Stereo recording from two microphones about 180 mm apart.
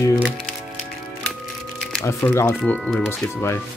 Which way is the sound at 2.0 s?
15° left (ahead or behind).